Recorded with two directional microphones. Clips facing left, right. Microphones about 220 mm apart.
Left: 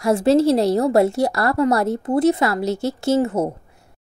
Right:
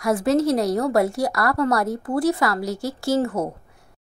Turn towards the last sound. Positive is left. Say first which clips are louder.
# left 3 dB
turn(degrees=25)  # may be behind; listen again after turning